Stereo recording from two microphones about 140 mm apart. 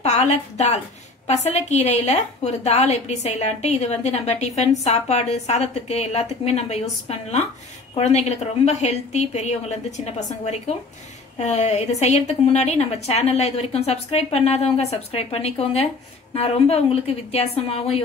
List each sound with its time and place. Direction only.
0.0 s a woman's voice: 50° left (ahead or behind)